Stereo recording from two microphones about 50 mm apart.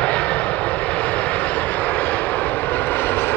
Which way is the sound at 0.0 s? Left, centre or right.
Left.